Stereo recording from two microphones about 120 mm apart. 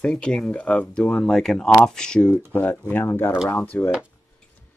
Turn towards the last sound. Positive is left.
turn(degrees=15)  # may be behind; listen again after turning